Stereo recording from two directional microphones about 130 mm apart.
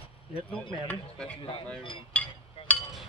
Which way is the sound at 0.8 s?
10° left (ahead or behind).